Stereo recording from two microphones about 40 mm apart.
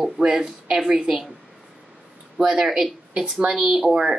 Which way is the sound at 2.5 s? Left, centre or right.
Centre.